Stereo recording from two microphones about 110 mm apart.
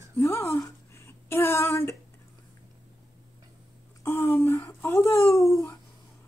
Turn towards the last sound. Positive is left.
turn(degrees=25)  # may be behind; listen again after turning